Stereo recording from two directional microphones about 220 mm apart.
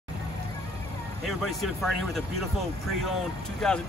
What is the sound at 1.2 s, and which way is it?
Speech, centre (ahead or behind).